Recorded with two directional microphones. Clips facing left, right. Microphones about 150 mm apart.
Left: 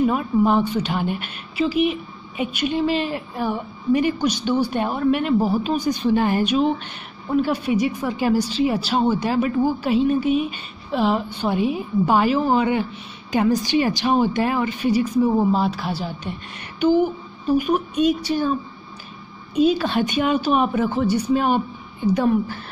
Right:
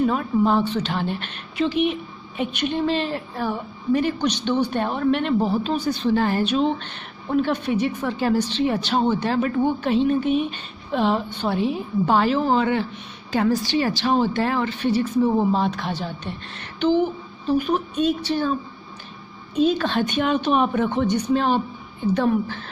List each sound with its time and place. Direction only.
0.0 s a woman's voice: 10° left (ahead or behind)